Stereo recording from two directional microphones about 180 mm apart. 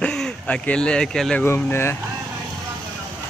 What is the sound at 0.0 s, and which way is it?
Speech, 5° left (ahead or behind).